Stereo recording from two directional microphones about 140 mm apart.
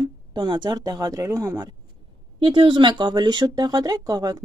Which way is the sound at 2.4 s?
35° right (ahead or behind).